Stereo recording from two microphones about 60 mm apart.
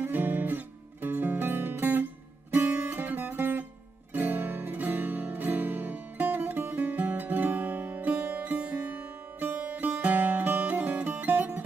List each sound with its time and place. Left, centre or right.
0.0 s music: right